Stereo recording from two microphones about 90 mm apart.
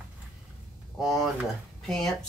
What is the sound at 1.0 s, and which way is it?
Speech, centre (ahead or behind).